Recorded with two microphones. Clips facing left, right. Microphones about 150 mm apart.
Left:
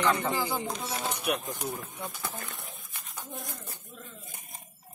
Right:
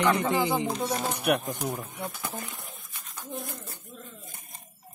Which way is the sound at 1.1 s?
60° right (ahead or behind).